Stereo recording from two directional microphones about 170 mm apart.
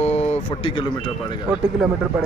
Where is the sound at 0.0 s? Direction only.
40° left (ahead or behind).